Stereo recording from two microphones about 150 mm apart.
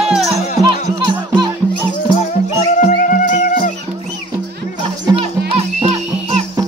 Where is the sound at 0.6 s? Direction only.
30° right (ahead or behind).